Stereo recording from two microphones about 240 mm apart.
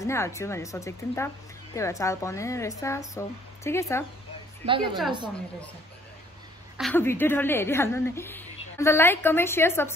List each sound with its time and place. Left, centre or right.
0.0 s a woman's voice: centre
4.6 s a woman's voice: right
6.8 s a woman's voice: centre